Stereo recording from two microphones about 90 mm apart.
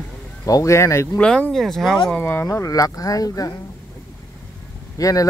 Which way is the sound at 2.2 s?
25° left (ahead or behind).